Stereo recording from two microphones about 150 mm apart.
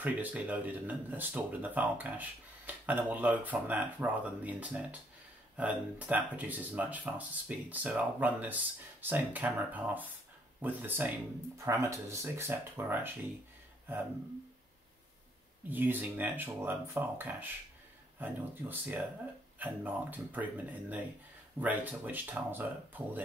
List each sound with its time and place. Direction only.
0.0 s speech: 10° right (ahead or behind)
15.7 s speech: 15° right (ahead or behind)